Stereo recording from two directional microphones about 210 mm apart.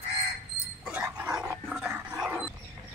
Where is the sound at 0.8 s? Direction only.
5° right (ahead or behind).